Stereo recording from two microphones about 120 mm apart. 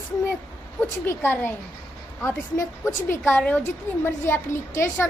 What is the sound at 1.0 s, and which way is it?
A woman's voice, 20° left (ahead or behind).